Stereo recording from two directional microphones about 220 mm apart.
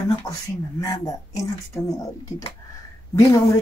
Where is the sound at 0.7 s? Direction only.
15° left (ahead or behind).